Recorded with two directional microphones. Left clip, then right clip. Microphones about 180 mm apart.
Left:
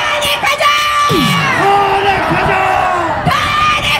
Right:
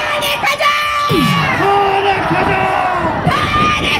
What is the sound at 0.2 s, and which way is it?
Music, 45° left (ahead or behind).